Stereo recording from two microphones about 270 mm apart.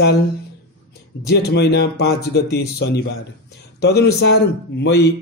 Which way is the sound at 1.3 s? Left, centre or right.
Left.